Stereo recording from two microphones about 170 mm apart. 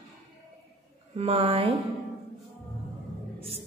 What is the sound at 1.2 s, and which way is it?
Speech, 35° right (ahead or behind).